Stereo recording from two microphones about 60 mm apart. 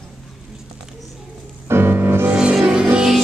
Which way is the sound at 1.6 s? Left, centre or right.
Right.